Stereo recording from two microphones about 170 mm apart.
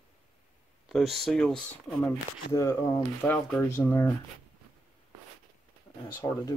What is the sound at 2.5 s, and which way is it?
Speech, 15° left (ahead or behind).